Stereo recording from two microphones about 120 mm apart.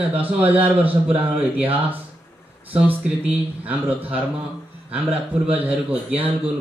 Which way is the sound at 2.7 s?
5° right (ahead or behind).